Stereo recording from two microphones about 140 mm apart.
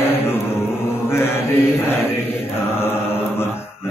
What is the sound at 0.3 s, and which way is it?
Chant, 15° left (ahead or behind).